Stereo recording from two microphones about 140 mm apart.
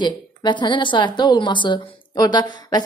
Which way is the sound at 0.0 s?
30° left (ahead or behind).